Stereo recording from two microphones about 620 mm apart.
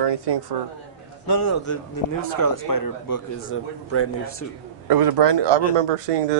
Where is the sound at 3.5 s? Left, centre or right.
Left.